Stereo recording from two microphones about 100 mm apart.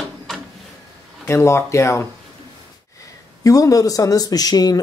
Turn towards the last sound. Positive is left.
turn(degrees=40)  # may be behind; listen again after turning